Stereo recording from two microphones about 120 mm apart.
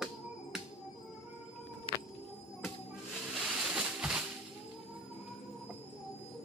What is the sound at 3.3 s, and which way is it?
Music, 5° right (ahead or behind).